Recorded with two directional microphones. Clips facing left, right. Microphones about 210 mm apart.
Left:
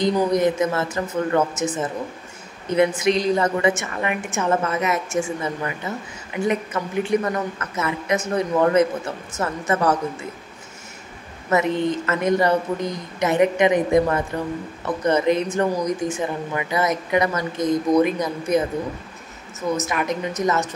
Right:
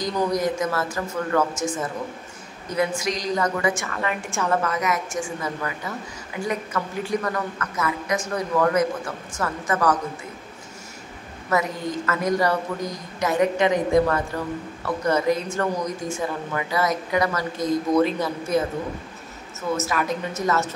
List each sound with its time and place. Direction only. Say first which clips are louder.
0.0 s speech: left 5 dB; 25° left (ahead or behind)
11.5 s speech: left 4 dB; 25° left (ahead or behind)
19.7 s a woman's voice: left 1 dB; 20° left (ahead or behind)